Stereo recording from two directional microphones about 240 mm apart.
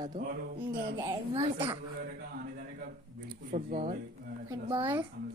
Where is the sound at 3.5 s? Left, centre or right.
Right.